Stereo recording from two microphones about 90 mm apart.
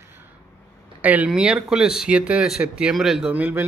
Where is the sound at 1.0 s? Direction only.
15° right (ahead or behind); by 3.3 s centre (ahead or behind).